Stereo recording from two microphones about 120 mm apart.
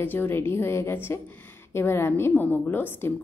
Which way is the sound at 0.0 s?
15° left (ahead or behind).